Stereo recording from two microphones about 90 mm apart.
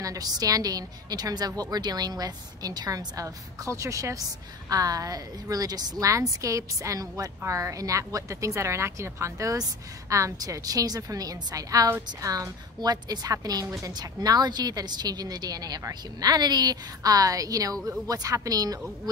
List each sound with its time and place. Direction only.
0.0 s a woman's voice: 40° right (ahead or behind)